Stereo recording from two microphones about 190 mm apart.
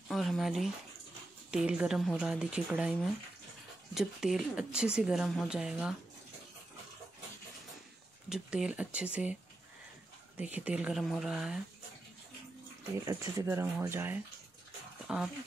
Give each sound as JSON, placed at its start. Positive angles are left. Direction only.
{"t": 0.1, "sound": "speech", "side_deg": 0}
{"t": 3.9, "sound": "speech", "side_deg": 0}
{"t": 8.3, "sound": "speech", "side_deg": -5}
{"t": 13.0, "sound": "speech", "side_deg": -15}